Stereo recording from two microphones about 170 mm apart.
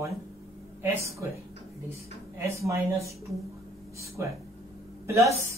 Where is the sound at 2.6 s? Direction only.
15° right (ahead or behind).